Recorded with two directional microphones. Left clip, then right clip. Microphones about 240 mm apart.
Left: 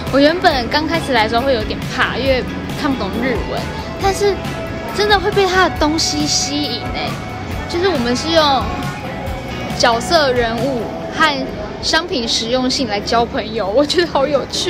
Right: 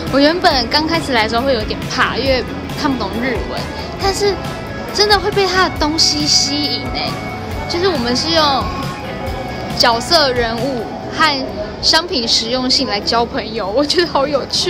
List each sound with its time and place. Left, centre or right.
0.1 s a woman's voice: centre
9.8 s a woman's voice: centre